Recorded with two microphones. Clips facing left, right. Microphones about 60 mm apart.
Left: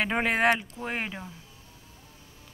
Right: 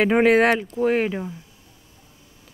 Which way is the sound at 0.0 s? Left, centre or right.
Centre.